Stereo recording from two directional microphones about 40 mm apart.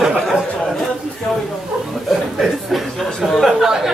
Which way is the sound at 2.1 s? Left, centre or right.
Centre.